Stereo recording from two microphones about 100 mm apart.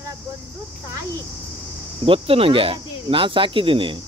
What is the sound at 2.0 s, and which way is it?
Speech, 65° right (ahead or behind).